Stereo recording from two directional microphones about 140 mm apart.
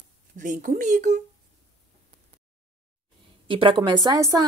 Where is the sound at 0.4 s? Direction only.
70° right (ahead or behind).